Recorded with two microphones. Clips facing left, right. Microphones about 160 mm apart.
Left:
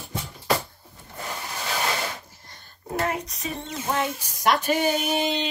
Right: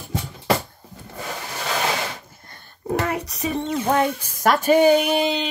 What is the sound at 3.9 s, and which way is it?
Speech, 55° right (ahead or behind).